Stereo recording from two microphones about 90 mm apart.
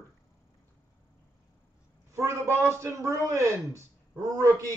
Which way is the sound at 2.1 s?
30° right (ahead or behind).